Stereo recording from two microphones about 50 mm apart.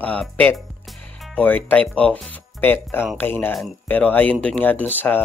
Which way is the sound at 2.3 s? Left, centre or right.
Left.